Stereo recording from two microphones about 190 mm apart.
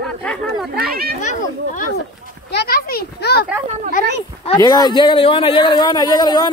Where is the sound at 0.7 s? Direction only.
55° right (ahead or behind).